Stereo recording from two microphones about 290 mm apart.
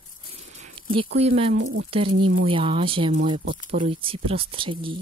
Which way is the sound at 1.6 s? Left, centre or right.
Right.